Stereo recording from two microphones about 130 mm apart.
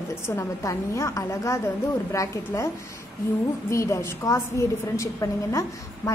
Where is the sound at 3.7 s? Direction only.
20° left (ahead or behind).